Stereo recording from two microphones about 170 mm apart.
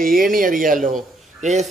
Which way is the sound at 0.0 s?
55° right (ahead or behind).